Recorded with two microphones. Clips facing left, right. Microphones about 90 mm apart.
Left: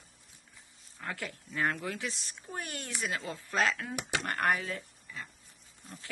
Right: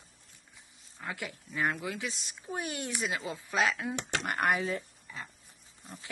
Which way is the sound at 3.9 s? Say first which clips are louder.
Right 1 dB; 5° left (ahead or behind).